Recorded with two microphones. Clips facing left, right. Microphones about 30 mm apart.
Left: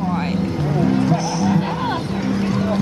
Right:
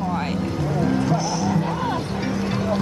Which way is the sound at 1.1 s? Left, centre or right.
Centre.